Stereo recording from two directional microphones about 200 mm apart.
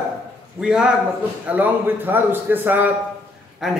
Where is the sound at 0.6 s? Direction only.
5° right (ahead or behind).